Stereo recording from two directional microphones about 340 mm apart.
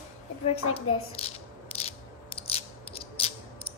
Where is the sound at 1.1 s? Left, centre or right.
Centre.